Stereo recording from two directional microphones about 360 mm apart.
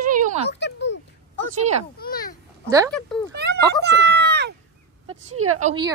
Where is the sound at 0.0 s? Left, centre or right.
Right.